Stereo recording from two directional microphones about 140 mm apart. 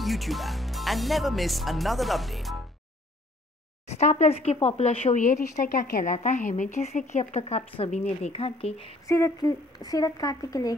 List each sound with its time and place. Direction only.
0.0 s speech: centre (ahead or behind)
3.8 s speech: 50° left (ahead or behind); by 6.1 s 80° left
6.1 s speech: 55° left (ahead or behind)
9.0 s a woman's voice: 25° left (ahead or behind)